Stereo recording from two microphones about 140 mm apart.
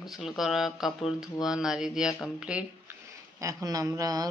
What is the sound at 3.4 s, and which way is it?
Speech, 25° right (ahead or behind).